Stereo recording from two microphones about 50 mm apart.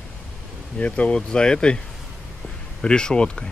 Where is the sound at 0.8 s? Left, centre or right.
Left.